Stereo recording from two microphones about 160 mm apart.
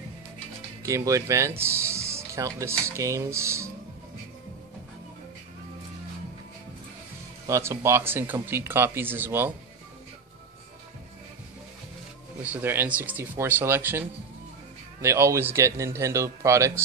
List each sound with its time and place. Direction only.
0.8 s speech: 20° right (ahead or behind)
7.4 s speech: 20° right (ahead or behind)
12.5 s speech: 10° right (ahead or behind)